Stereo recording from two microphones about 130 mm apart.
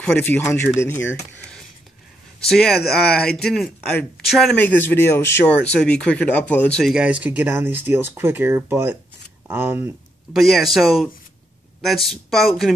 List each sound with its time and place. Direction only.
0.0 s speech: 15° left (ahead or behind)
2.4 s a man's voice: 5° left (ahead or behind)
4.6 s speech: 15° left (ahead or behind)
6.8 s speech: 5° right (ahead or behind)
10.3 s a man's voice: centre (ahead or behind)
12.3 s a man's voice: centre (ahead or behind)